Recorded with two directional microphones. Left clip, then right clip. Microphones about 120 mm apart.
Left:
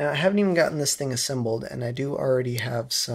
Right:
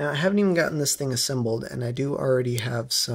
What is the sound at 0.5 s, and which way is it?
Speech, 45° right (ahead or behind).